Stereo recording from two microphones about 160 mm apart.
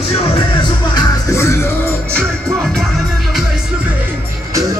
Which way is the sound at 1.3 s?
20° left (ahead or behind).